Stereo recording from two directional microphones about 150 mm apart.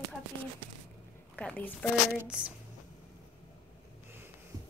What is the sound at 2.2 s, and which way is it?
Speech, 5° right (ahead or behind).